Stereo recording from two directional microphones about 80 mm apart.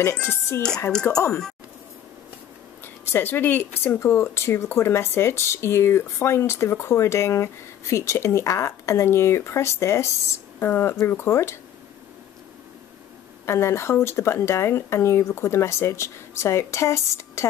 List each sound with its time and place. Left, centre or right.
0.2 s speech: left
3.1 s speech: left
13.5 s speech: left